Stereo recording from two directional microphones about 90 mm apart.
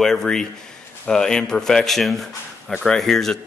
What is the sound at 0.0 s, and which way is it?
A man's voice, 5° left (ahead or behind).